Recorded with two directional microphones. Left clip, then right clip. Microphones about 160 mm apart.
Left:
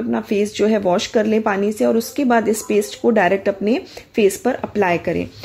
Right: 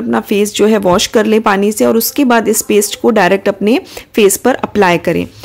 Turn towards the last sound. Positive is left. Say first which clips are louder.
# right 7 dB
turn(degrees=-30)  # may be behind; listen again after turning